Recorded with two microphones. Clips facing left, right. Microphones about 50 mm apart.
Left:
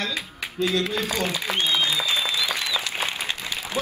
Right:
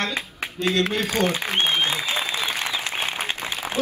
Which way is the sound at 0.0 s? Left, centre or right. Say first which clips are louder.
Right 2 dB; right.